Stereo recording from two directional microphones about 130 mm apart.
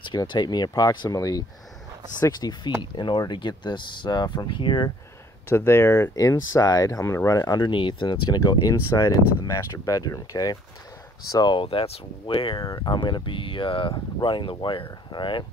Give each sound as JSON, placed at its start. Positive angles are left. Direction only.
{"t": 0.0, "sound": "speech", "side_deg": 35}
{"t": 5.5, "sound": "speech", "side_deg": 20}
{"t": 12.6, "sound": "speech", "side_deg": 30}